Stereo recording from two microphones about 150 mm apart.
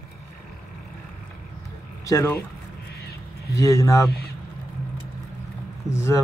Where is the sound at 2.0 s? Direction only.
20° left (ahead or behind).